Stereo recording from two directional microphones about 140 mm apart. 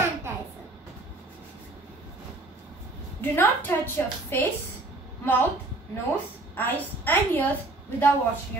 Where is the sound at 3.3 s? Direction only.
15° left (ahead or behind).